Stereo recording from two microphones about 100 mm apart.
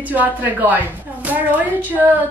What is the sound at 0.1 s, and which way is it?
A woman's voice, 15° right (ahead or behind).